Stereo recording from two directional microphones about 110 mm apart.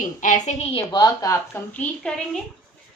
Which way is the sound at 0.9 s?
35° left (ahead or behind).